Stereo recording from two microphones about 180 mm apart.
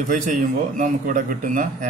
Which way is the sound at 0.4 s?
45° right (ahead or behind).